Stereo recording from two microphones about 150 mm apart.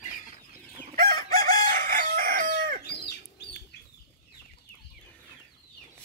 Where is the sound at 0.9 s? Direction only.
85° right; by 2.8 s 70° right (ahead or behind).